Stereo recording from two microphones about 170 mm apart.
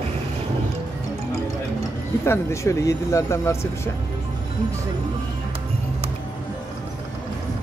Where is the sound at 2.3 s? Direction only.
15° left (ahead or behind).